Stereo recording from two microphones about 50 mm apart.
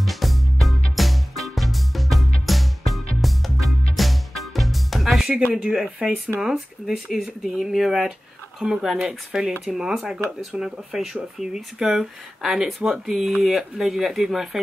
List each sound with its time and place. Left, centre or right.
0.0 s music: centre
5.5 s speech: centre
6.4 s speech: centre
9.0 s speech: centre